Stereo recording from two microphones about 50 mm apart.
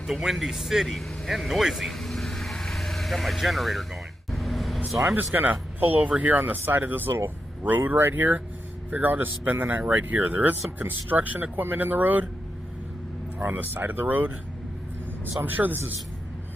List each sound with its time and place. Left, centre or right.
0.0 s speech: centre
4.3 s vehicle: centre
5.1 s speech: right
13.4 s speech: right
15.4 s speech: right